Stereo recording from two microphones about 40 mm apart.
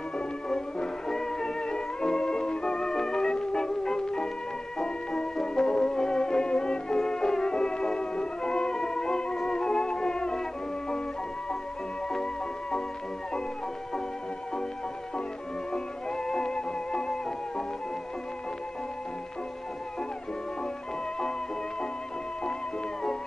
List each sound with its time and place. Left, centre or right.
0.5 s music: centre
15.7 s music: centre